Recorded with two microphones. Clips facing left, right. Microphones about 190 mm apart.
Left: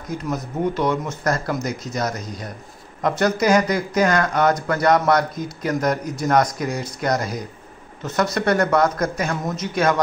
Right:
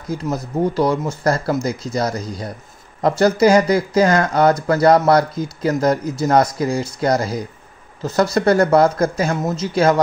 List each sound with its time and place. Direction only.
0.3 s speech: 35° right (ahead or behind)